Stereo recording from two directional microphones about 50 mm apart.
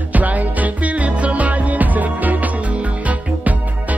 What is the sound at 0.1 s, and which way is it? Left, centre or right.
Music, right.